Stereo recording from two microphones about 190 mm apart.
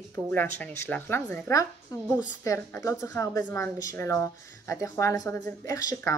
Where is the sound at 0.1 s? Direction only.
10° left (ahead or behind).